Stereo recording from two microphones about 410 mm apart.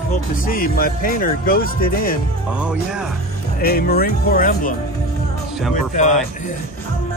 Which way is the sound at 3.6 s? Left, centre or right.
Left.